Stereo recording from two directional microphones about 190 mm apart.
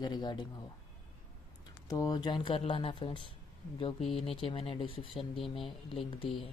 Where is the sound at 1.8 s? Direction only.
20° left (ahead or behind).